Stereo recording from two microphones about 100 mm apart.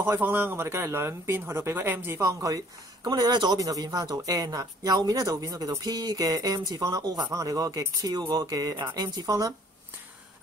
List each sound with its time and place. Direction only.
0.0 s a man's voice: 20° right (ahead or behind)
2.4 s speech: 40° right (ahead or behind)